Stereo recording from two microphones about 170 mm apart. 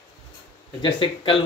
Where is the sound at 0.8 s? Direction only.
30° left (ahead or behind).